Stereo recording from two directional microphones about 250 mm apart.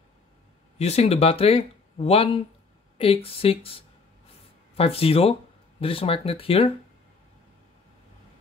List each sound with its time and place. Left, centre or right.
0.7 s speech: left